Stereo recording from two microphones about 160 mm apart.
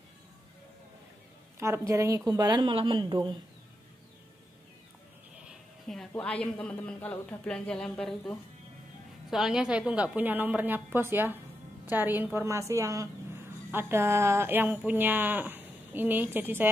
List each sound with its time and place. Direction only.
1.6 s a woman's voice: 15° right (ahead or behind)
5.5 s a woman's voice: 5° left (ahead or behind)
9.3 s a woman's voice: 5° right (ahead or behind)